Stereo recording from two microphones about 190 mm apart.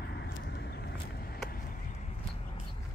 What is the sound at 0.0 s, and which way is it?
Vehicle, 60° left (ahead or behind).